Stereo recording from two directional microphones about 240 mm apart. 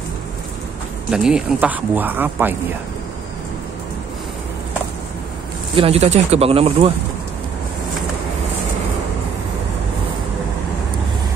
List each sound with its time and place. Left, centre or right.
1.1 s speech: centre
5.8 s speech: right